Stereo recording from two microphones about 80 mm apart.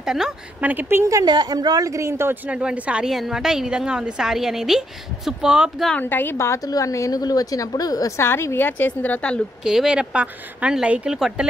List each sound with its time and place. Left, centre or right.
0.0 s a woman's voice: centre
0.6 s speech: right
1.0 s a woman's voice: right
1.3 s a woman's voice: right
2.4 s a woman's voice: centre
5.9 s a woman's voice: left
8.2 s a woman's voice: left; by 9.4 s centre
9.6 s a woman's voice: centre